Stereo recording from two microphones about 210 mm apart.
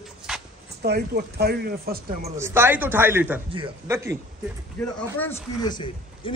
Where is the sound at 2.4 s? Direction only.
10° right (ahead or behind).